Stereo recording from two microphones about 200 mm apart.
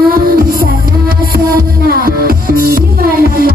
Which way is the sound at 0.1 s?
50° right (ahead or behind).